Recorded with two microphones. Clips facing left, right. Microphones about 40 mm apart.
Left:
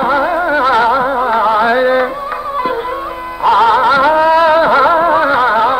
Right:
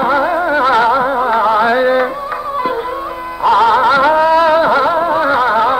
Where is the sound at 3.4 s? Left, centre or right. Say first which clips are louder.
Left 1 dB; centre; by 5.2 s left.